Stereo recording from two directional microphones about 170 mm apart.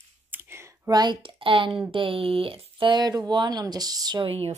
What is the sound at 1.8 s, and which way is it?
Speech, 35° right (ahead or behind).